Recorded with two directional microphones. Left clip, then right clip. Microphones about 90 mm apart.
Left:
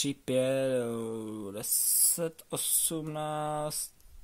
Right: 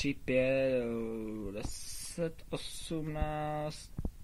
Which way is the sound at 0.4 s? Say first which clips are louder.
Left 1 dB; 30° left (ahead or behind).